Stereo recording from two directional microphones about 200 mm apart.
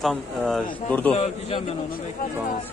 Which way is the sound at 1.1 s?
30° left (ahead or behind).